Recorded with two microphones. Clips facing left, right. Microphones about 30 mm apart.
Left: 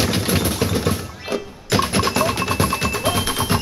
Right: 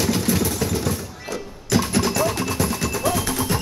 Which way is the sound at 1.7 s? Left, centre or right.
Left.